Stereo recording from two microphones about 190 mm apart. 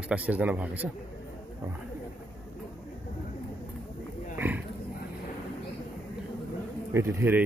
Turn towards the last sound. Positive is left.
turn(degrees=-10)  # may be behind; listen again after turning